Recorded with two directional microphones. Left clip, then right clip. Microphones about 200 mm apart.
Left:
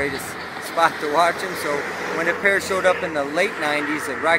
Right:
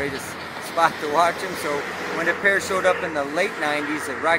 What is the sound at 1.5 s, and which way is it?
Speech, 50° right (ahead or behind).